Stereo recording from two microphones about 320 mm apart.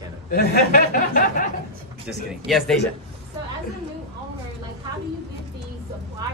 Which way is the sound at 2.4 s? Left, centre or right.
Centre.